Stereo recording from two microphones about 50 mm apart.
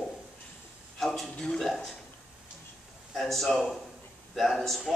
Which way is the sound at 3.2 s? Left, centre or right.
Centre.